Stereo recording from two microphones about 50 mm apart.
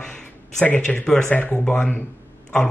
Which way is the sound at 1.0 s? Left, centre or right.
Centre.